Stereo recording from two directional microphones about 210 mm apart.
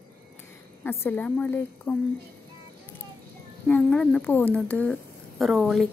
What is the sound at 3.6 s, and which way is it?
Speech, 5° left (ahead or behind).